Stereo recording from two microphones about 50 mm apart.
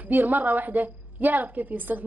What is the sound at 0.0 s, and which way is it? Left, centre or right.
A woman's voice, right.